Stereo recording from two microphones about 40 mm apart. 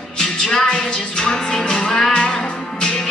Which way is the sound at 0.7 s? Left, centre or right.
Centre.